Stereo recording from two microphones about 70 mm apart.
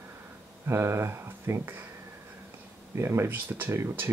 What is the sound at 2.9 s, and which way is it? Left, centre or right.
Speech, right.